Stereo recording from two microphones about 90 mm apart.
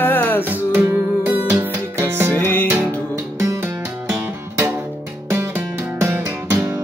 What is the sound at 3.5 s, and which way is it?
Music, 35° right (ahead or behind).